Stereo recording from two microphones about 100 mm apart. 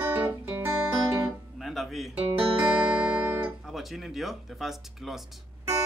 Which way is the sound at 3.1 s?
15° right (ahead or behind).